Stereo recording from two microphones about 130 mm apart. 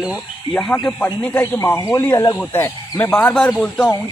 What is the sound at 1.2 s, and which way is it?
Speech, 15° left (ahead or behind).